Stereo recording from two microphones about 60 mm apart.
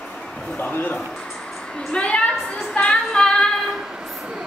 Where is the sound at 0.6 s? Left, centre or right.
Left.